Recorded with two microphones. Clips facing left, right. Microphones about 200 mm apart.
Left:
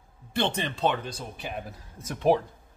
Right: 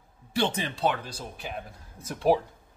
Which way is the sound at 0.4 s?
65° left (ahead or behind).